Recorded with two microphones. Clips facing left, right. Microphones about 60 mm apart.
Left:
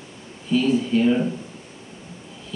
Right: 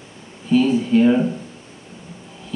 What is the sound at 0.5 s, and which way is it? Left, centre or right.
Speech, right.